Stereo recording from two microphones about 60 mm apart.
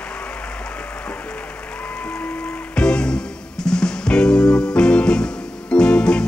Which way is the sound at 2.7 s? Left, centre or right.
Centre.